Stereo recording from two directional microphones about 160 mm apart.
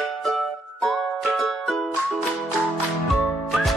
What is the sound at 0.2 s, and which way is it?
Music, centre (ahead or behind).